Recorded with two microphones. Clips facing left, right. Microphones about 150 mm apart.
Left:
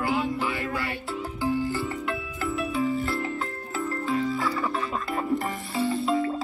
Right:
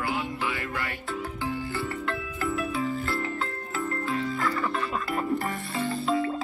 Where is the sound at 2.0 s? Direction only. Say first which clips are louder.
Even; centre (ahead or behind).